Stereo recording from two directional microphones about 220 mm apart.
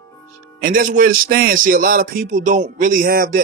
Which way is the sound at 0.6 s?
40° right (ahead or behind).